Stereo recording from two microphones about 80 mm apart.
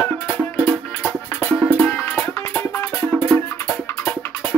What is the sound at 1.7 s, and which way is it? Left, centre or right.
Music, left.